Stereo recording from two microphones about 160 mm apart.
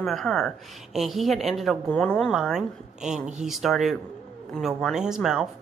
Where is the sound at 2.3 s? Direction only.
5° right (ahead or behind).